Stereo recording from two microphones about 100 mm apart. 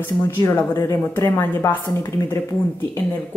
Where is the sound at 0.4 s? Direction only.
30° left (ahead or behind).